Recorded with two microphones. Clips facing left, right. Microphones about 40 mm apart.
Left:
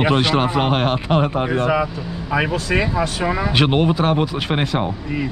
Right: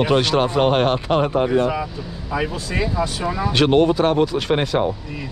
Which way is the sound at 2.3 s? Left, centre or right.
Left.